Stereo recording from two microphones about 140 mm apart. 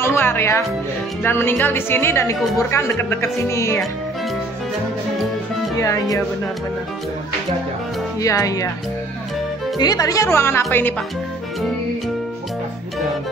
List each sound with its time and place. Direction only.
0.0 s speech: 15° left (ahead or behind)
8.2 s speech: 25° left (ahead or behind)
9.8 s speech: 25° left (ahead or behind)